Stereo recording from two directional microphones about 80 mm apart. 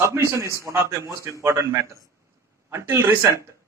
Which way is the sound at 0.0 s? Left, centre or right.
Right.